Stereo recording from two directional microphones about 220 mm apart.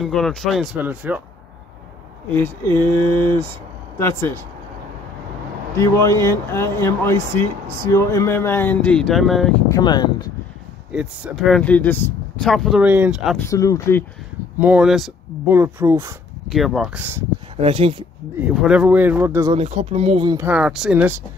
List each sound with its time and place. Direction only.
0.0 s speech: centre (ahead or behind)
2.3 s speech: 10° left (ahead or behind)
5.8 s speech: 15° left (ahead or behind)
9.7 s speech: 20° left (ahead or behind)
10.9 s speech: centre (ahead or behind)
13.4 s speech: 15° left (ahead or behind)
14.6 s speech: 5° right (ahead or behind)
16.5 s speech: centre (ahead or behind)
17.6 s speech: 25° right (ahead or behind)
18.4 s speech: 5° right (ahead or behind)
19.5 s speech: 30° right (ahead or behind)
20.3 s speech: 5° right (ahead or behind)